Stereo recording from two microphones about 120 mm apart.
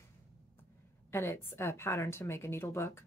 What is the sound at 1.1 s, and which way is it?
Speech, 20° left (ahead or behind).